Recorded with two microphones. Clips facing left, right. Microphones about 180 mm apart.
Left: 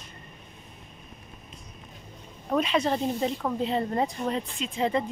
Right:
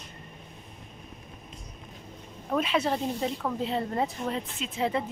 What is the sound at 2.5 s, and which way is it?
Speech, 5° right (ahead or behind).